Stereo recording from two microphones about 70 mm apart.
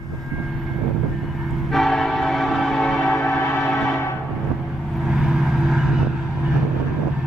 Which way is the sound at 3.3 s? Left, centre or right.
Left.